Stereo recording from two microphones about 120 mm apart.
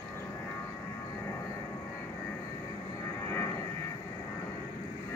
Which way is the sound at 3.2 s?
20° left (ahead or behind).